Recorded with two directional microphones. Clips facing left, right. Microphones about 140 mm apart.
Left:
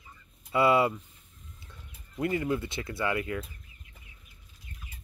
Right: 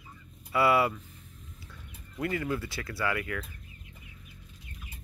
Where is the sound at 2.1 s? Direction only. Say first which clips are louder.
Left 3 dB; 20° left (ahead or behind).